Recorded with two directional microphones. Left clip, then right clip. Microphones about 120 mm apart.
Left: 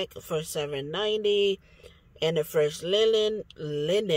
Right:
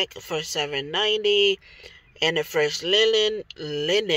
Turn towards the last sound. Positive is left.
turn(degrees=15)  # may be behind; listen again after turning